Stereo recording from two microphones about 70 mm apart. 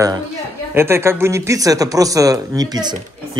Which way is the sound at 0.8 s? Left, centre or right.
Right.